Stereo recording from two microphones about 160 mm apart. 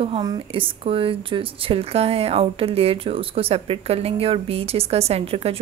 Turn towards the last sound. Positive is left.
turn(degrees=-40)  # may be behind; listen again after turning